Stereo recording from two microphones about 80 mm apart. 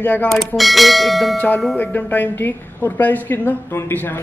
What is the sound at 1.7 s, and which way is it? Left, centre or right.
Speech, left.